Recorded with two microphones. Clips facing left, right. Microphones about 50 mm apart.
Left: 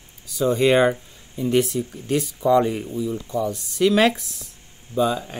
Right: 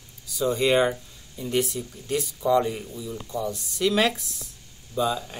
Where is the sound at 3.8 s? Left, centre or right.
Left.